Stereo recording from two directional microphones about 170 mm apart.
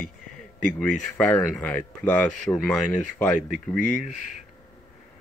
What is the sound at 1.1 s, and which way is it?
Speech, 10° left (ahead or behind).